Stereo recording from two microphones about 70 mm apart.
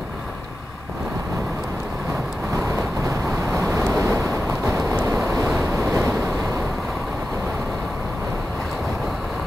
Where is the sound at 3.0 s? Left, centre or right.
Right.